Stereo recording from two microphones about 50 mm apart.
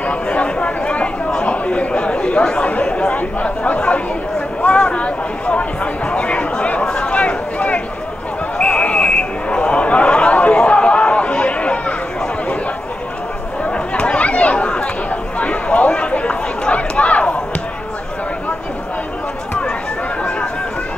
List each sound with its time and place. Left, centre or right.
0.0 s chatter: left
4.6 s a sound: left
13.7 s chatter: left